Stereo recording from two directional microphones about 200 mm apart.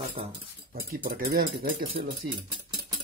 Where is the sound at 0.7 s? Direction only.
45° right (ahead or behind).